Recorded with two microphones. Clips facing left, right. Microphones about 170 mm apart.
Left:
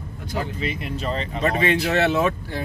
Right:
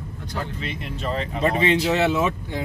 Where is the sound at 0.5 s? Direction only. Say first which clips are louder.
Left 4 dB; 10° left (ahead or behind).